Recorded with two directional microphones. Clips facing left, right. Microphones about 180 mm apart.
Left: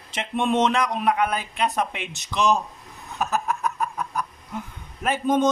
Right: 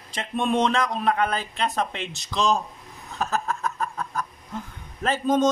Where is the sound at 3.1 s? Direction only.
15° left (ahead or behind).